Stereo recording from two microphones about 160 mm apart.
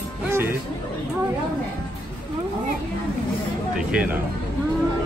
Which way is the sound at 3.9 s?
10° right (ahead or behind).